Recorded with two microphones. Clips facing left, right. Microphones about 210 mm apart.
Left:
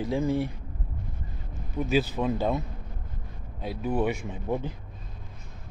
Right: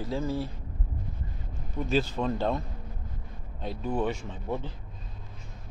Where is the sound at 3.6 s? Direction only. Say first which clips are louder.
Left 2 dB; 10° left (ahead or behind).